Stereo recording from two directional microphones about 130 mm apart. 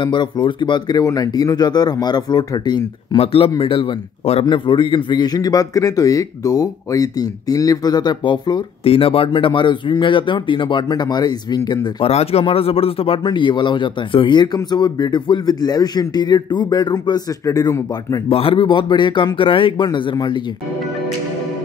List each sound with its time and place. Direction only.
0.0 s speech: 35° left (ahead or behind)
3.2 s a man's voice: 45° left (ahead or behind)
8.8 s speech: 45° left (ahead or behind)
12.0 s speech: 50° left (ahead or behind); by 18.2 s 25° left (ahead or behind)
18.3 s speech: 45° left (ahead or behind)